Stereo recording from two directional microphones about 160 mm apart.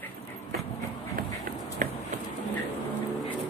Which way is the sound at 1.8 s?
55° right (ahead or behind).